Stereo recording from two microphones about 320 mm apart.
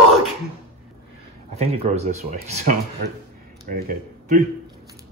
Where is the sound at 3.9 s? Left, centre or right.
Right.